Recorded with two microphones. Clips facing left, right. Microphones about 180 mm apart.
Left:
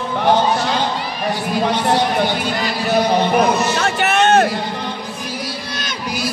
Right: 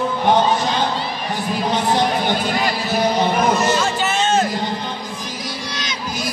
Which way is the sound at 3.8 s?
65° left (ahead or behind).